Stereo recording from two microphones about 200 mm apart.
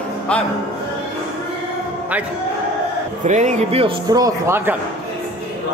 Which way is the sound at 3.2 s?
35° right (ahead or behind).